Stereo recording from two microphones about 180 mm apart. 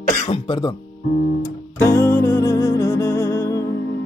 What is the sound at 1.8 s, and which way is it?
Music, 15° left (ahead or behind).